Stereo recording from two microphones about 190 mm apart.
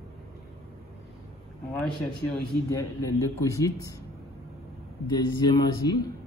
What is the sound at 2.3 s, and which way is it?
A man's voice, 15° left (ahead or behind).